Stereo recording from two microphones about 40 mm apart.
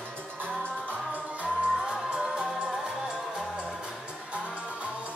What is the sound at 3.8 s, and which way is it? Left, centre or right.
Music, right.